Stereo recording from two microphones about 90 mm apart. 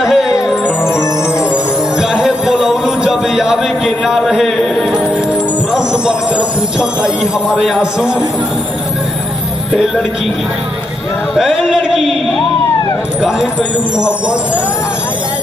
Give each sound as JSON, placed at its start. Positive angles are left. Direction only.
{"t": 0.0, "sound": "music", "side_deg": -5}
{"t": 5.7, "sound": "speech", "side_deg": -10}
{"t": 11.3, "sound": "a sound", "side_deg": -5}
{"t": 13.2, "sound": "speech", "side_deg": -10}